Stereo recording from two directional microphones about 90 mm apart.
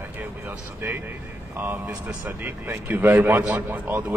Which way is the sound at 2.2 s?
20° right (ahead or behind).